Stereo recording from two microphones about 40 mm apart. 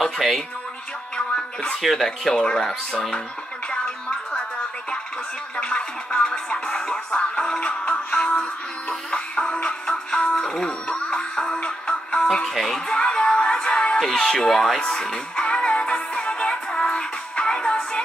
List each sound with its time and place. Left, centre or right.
0.0 s music: centre
1.3 s a sound: left
1.8 s speech: centre
3.7 s music: left
5.6 s music: left
12.5 s speech: centre
12.8 s music: left
13.9 s speech: centre; by 15.0 s left
15.3 s music: left